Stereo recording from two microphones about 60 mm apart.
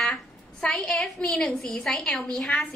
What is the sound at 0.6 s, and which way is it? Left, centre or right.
A woman's voice, centre.